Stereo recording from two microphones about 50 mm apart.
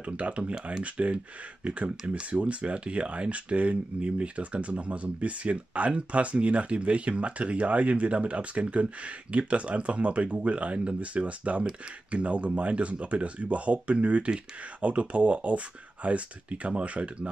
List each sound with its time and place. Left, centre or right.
0.0 s speech: right